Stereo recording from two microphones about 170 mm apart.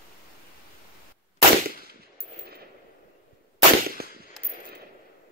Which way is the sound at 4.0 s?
65° right (ahead or behind).